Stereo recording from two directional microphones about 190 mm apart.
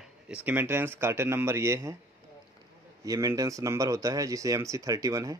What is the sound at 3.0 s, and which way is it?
Speech, 15° right (ahead or behind).